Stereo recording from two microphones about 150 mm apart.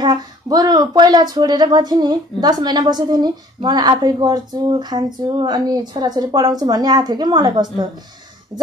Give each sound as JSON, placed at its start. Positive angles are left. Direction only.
{"t": 0.0, "sound": "speech", "side_deg": -30}